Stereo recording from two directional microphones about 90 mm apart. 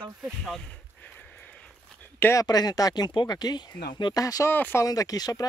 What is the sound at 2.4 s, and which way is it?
Speech, 45° left (ahead or behind).